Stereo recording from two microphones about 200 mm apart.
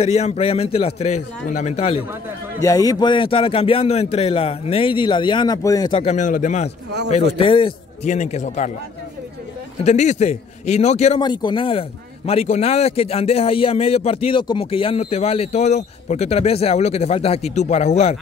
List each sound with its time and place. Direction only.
0.0 s a man's voice: 30° left (ahead or behind)
2.6 s a man's voice: 15° left (ahead or behind); by 8.7 s 35° left (ahead or behind)
9.8 s a man's voice: 35° left (ahead or behind)
11.1 s a man's voice: 20° left (ahead or behind)